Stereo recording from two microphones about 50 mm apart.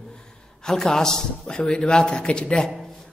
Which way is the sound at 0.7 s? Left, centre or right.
Centre.